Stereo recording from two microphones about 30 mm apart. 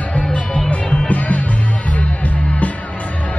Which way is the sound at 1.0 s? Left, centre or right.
Left.